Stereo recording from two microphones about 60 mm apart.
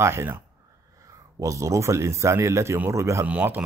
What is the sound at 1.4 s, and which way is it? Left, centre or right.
Speech, right.